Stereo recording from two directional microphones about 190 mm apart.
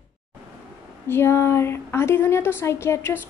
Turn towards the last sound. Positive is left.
turn(degrees=15)  # may be behind; listen again after turning